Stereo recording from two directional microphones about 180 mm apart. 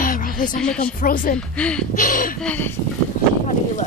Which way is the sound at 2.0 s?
50° left (ahead or behind).